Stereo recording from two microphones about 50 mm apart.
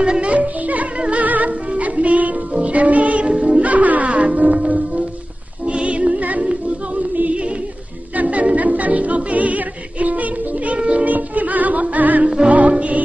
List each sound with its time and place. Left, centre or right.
0.0 s music: right
11.1 s music: right